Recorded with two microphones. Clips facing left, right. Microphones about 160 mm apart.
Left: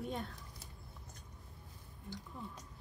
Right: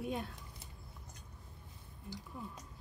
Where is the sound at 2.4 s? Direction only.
10° right (ahead or behind).